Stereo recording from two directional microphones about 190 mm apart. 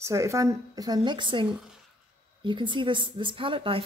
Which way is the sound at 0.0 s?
15° right (ahead or behind).